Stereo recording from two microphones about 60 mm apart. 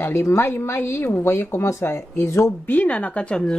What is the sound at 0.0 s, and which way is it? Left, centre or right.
A woman's voice, left.